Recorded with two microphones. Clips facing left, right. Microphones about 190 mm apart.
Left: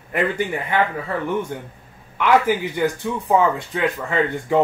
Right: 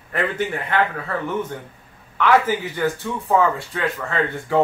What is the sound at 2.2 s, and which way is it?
Speech, 15° left (ahead or behind).